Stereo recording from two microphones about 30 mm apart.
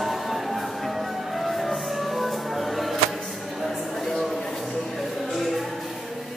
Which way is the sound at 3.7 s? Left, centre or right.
Centre.